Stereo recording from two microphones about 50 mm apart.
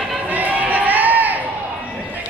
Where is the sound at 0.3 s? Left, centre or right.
Right.